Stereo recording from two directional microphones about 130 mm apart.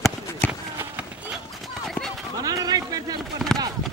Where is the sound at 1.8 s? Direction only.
Centre (ahead or behind).